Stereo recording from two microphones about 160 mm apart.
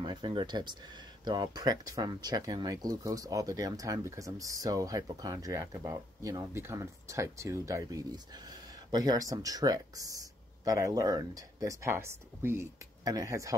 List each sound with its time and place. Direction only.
0.0 s speech: 30° right (ahead or behind)